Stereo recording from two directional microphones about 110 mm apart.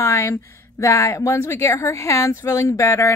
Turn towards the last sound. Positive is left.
turn(degrees=25)  # may be behind; listen again after turning